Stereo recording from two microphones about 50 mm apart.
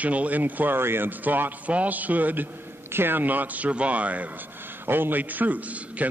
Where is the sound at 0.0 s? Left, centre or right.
Right.